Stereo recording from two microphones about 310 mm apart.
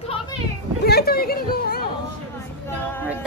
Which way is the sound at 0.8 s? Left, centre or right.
Left.